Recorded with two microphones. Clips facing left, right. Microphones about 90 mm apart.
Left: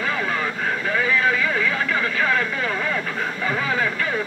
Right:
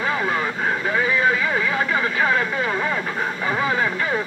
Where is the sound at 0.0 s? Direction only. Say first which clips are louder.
Right 2 dB; 20° right (ahead or behind).